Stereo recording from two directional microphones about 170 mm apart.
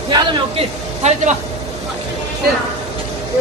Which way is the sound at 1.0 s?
40° right (ahead or behind).